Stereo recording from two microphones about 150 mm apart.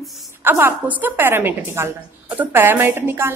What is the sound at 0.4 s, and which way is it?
A woman's voice, 15° right (ahead or behind).